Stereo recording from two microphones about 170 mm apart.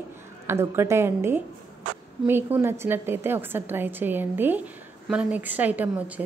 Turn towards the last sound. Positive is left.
turn(degrees=-10)  # may be behind; listen again after turning